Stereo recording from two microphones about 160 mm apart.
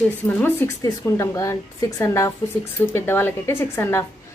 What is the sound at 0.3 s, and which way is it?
Speech, 15° left (ahead or behind).